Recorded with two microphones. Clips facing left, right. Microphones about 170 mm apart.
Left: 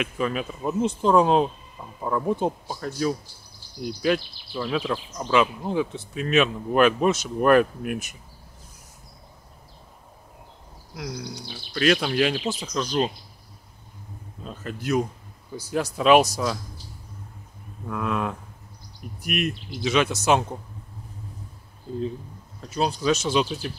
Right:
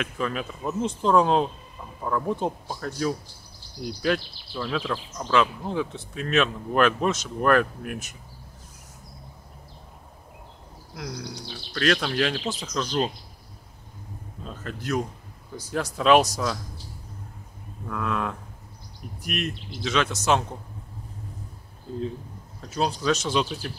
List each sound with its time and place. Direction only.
0.0 s speech: 5° left (ahead or behind)
11.0 s speech: 10° left (ahead or behind)
14.4 s speech: 5° left (ahead or behind)
17.8 s speech: 10° left (ahead or behind)
22.8 s speech: 5° left (ahead or behind)